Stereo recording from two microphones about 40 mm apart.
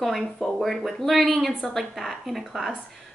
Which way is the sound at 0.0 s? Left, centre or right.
Centre.